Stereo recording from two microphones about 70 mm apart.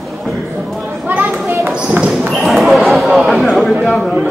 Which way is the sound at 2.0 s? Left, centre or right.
Centre.